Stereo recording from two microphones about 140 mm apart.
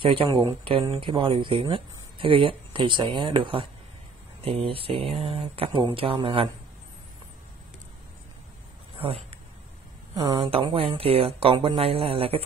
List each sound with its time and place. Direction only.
0.0 s speech: 40° right (ahead or behind)
8.9 s a sound: 40° right (ahead or behind)
10.1 s speech: 30° right (ahead or behind)